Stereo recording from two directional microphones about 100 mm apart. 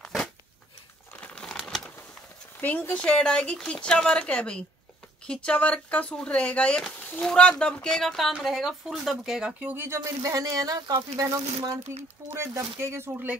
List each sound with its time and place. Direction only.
0.0 s a sound: 5° left (ahead or behind)
1.2 s crumpling: 10° left (ahead or behind)
2.6 s speech: 15° left (ahead or behind); by 9.9 s 20° right (ahead or behind)
9.9 s speech: 35° right (ahead or behind); by 13.4 s 20° right (ahead or behind)